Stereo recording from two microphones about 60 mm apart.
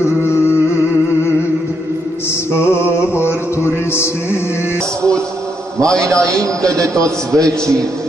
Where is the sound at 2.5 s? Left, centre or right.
Left.